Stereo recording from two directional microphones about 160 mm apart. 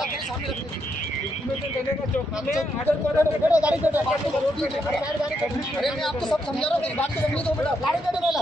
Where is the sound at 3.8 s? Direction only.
10° right (ahead or behind).